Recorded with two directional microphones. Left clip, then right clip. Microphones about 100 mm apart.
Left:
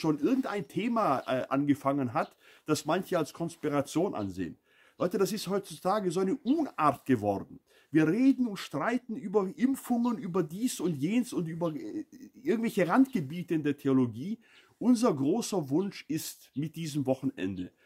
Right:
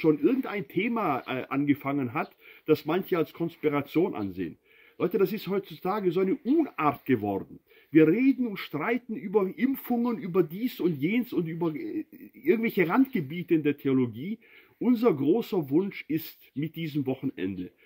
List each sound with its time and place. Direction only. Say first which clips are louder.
0.2 s speech: right 3 dB; 45° left (ahead or behind)
8.7 s speech: right 2 dB; 30° left (ahead or behind)
11.0 s speech: right 3 dB; 45° left (ahead or behind)